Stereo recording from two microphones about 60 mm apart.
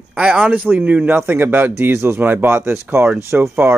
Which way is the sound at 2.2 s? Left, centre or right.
Right.